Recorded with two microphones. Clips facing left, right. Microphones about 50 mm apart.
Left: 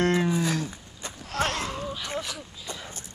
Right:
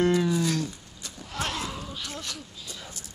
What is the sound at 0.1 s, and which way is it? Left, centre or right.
Livestock, left.